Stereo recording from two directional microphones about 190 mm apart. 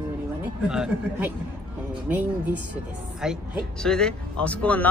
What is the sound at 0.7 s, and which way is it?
Speech, 5° right (ahead or behind).